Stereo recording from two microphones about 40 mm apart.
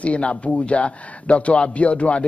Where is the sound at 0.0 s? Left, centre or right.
Left.